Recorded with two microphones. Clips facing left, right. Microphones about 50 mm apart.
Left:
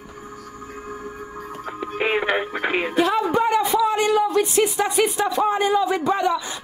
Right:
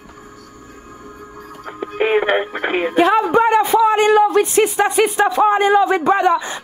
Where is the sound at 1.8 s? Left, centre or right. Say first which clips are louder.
Right 6 dB; right.